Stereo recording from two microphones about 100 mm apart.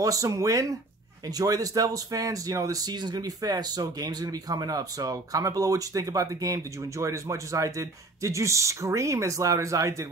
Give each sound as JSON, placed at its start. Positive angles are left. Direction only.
{"t": 0.0, "sound": "speech", "side_deg": -35}